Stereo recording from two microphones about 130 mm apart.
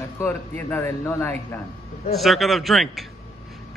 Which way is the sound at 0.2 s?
15° left (ahead or behind).